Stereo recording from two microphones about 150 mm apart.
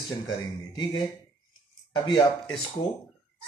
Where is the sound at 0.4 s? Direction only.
30° left (ahead or behind).